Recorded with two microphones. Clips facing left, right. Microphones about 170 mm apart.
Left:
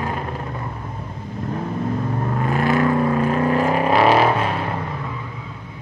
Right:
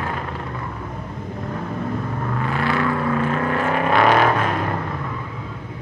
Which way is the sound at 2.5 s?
40° left (ahead or behind).